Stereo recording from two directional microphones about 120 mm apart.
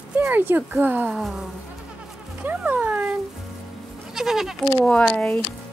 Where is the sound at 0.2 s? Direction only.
15° right (ahead or behind).